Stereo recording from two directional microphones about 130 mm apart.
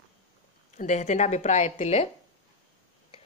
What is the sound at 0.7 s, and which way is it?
A woman's voice, 65° left (ahead or behind).